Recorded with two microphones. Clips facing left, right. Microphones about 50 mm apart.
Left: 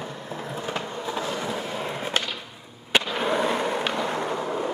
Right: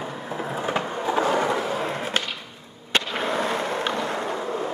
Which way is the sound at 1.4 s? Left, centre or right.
Right.